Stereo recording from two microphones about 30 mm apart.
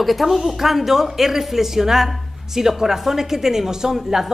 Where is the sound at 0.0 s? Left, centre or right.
Centre.